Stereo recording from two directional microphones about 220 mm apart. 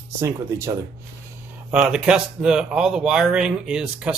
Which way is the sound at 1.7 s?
5° right (ahead or behind).